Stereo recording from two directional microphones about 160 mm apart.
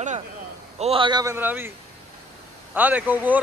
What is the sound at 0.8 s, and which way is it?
Speech, 35° right (ahead or behind).